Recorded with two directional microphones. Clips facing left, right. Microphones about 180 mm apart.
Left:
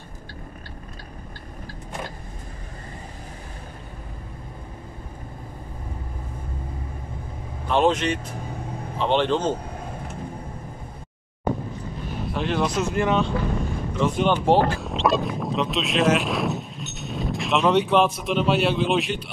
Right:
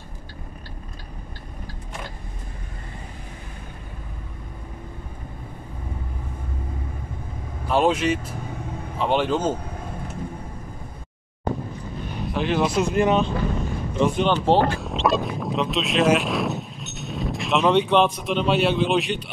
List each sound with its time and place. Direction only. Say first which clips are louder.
7.6 s a man's voice: even; 5° right (ahead or behind)
12.1 s speech: right 2 dB; centre (ahead or behind); by 13.3 s 20° right (ahead or behind)
14.1 s speech: left 2 dB; 10° left (ahead or behind)
14.8 s speech: even; centre (ahead or behind)